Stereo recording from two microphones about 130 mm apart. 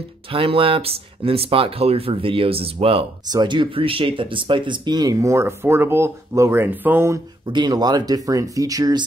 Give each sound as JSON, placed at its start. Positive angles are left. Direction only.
{"t": 0.3, "sound": "speech", "side_deg": -45}
{"t": 3.3, "sound": "speech", "side_deg": -35}
{"t": 7.4, "sound": "speech", "side_deg": -35}